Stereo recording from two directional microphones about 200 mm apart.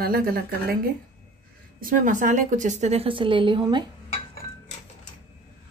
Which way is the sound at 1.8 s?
40° right (ahead or behind).